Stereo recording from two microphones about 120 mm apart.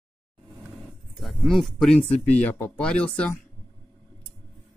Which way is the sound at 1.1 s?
Centre (ahead or behind).